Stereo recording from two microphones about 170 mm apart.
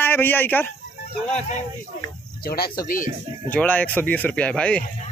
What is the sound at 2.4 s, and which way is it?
Speech, 65° left (ahead or behind).